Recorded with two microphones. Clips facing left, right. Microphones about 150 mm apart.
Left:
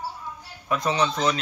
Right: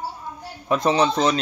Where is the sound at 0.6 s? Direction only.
25° right (ahead or behind).